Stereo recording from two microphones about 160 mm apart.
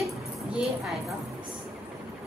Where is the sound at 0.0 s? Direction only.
5° right (ahead or behind).